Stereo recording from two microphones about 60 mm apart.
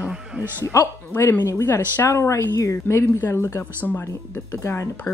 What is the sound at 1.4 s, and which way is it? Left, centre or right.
A woman's voice, left.